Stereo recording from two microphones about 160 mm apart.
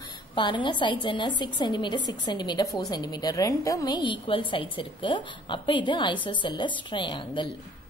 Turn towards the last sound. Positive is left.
turn(degrees=30)  # may be behind; listen again after turning